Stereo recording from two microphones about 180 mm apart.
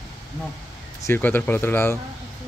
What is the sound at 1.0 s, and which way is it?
Speech, 10° left (ahead or behind).